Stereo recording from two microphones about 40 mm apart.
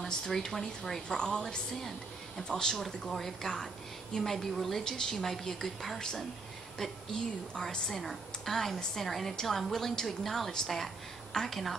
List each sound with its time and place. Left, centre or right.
0.0 s a woman's voice: centre
2.5 s a woman's voice: centre